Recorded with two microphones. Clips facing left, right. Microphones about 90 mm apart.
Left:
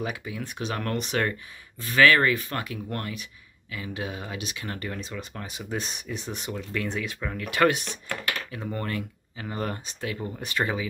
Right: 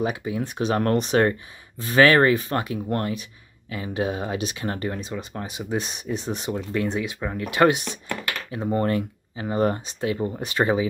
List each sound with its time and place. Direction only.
0.0 s speech: 30° right (ahead or behind)
6.0 s speech: 30° right (ahead or behind)